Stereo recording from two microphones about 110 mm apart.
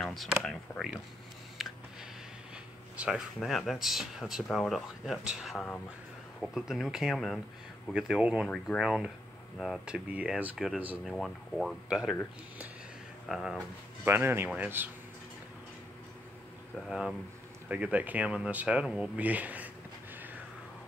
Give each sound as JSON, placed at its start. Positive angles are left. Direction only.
{"t": 0.0, "sound": "speech", "side_deg": 0}
{"t": 1.6, "sound": "a sound", "side_deg": -5}
{"t": 3.3, "sound": "speech", "side_deg": 0}
{"t": 7.9, "sound": "speech", "side_deg": -10}
{"t": 8.5, "sound": "speech", "side_deg": 5}
{"t": 11.1, "sound": "speech", "side_deg": 0}
{"t": 13.3, "sound": "speech", "side_deg": -5}
{"t": 14.0, "sound": "speech", "side_deg": -20}
{"t": 16.7, "sound": "speech", "side_deg": -5}